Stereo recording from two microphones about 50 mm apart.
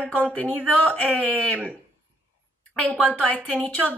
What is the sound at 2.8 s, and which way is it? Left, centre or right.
Speech, left.